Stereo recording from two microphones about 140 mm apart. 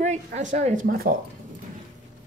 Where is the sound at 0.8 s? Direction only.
90° right.